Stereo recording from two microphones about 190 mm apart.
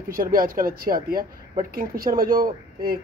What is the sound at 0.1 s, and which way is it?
Speech, 50° right (ahead or behind).